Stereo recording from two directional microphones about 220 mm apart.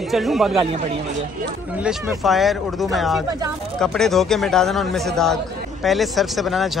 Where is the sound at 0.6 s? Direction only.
25° right (ahead or behind).